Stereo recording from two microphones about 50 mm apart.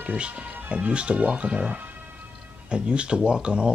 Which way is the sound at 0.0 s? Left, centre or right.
Right.